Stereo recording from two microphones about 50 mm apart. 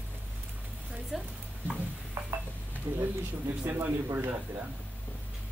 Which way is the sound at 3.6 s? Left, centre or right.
Right.